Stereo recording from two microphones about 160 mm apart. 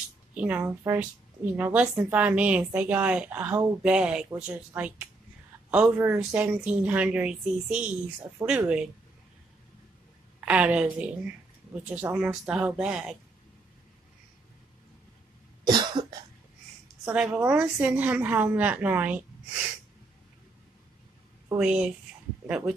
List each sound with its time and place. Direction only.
0.3 s a woman's voice: 10° right (ahead or behind)
10.4 s a woman's voice: 5° right (ahead or behind)
15.6 s cough: 30° right (ahead or behind)
17.0 s a woman's voice: 10° right (ahead or behind)
21.5 s speech: 5° right (ahead or behind)